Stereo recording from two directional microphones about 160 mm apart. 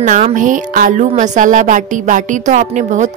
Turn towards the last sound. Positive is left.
turn(degrees=-50)  # may be behind; listen again after turning